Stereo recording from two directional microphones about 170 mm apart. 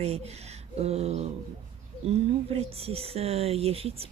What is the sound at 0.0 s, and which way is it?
Speech, 40° right (ahead or behind).